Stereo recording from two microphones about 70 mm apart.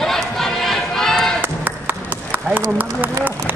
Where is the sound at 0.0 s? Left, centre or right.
Centre.